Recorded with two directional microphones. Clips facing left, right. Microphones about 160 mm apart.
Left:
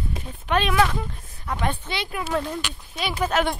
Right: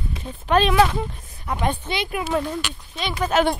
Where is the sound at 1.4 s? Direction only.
20° right (ahead or behind).